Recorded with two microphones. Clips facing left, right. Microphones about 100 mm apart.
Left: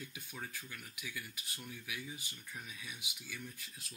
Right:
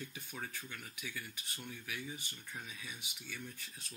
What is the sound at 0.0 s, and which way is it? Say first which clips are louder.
Speech: right 2 dB; 5° left (ahead or behind).